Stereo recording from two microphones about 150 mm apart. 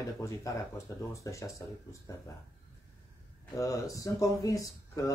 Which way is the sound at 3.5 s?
20° left (ahead or behind).